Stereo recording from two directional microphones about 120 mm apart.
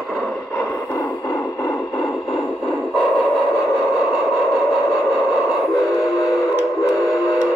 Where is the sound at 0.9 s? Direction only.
25° left (ahead or behind).